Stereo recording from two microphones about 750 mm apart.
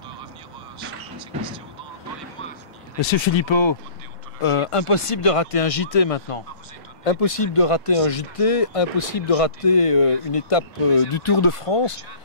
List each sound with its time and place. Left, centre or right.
1.1 s vehicle: centre
3.3 s speech: left